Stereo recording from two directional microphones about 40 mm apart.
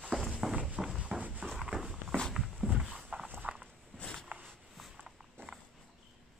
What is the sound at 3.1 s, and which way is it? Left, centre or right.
Walk, right.